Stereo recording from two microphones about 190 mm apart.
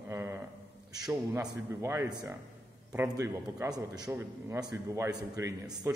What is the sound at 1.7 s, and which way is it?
A man's voice, 15° right (ahead or behind).